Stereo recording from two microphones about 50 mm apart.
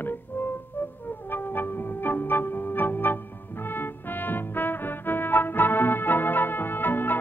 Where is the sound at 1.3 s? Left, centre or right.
Left.